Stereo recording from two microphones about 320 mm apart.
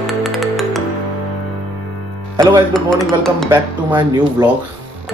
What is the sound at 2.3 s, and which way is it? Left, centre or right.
Speech, centre.